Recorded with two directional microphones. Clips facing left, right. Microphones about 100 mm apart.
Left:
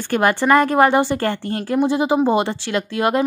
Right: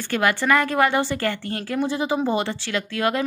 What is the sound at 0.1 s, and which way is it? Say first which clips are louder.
A woman's voice: left 5 dB; 40° left (ahead or behind).